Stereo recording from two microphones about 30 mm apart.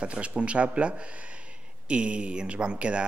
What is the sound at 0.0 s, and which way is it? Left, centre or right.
Speech, right.